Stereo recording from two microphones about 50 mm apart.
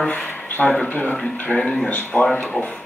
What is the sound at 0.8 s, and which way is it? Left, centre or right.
Speech, left.